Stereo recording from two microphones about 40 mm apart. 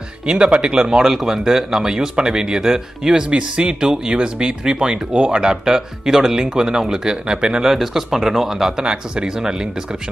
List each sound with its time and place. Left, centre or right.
0.3 s speech: right
3.3 s speech: right